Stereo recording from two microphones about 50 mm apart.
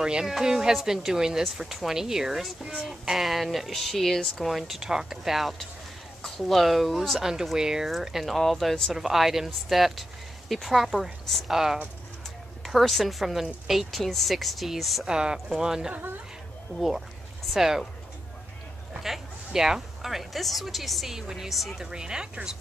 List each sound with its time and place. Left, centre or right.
0.0 s speech: centre
2.9 s a woman's voice: centre
15.0 s speech: centre
17.6 s speech: centre
19.0 s a woman's voice: centre